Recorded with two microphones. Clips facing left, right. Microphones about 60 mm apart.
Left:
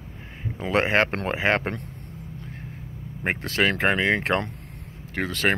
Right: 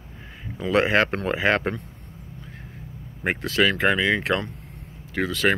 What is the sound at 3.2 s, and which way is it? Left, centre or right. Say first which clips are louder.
Speech: right 2 dB; left.